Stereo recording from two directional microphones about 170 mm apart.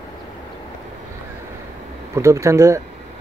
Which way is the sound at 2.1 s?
15° right (ahead or behind).